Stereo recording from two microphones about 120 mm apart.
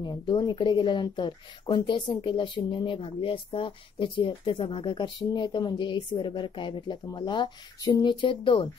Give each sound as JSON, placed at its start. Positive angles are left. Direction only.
{"t": 0.0, "sound": "a woman's voice", "side_deg": 35}